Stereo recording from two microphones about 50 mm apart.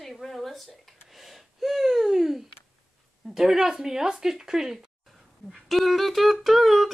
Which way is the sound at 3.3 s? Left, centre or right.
Centre.